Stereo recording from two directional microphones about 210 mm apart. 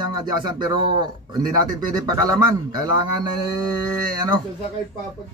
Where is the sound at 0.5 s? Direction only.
20° right (ahead or behind).